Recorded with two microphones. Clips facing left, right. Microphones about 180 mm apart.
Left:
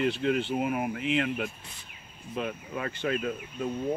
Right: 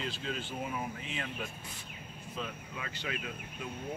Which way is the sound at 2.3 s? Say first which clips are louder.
Left 9 dB; 60° left (ahead or behind).